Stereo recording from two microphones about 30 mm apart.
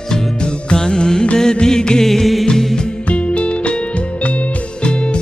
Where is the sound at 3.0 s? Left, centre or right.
Left.